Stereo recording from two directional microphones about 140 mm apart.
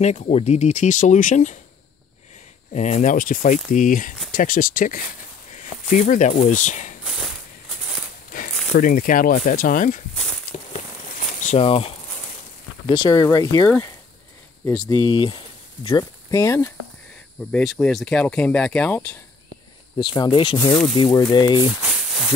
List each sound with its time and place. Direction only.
0.0 s speech: 55° left (ahead or behind)
2.7 s speech: 55° left (ahead or behind); by 5.0 s 80° left
5.5 s speech: 65° left (ahead or behind)
8.7 s speech: 80° left
10.1 s a sound: 5° left (ahead or behind)
10.5 s insect: 55° left (ahead or behind)
11.5 s speech: 45° left (ahead or behind)
12.9 s speech: 25° left (ahead or behind)
14.9 s speech: 35° left (ahead or behind)
15.9 s speech: 25° left (ahead or behind)
17.5 s speech: 5° left (ahead or behind)
20.0 s speech: 30° left (ahead or behind)
21.6 s a sound: 10° right (ahead or behind)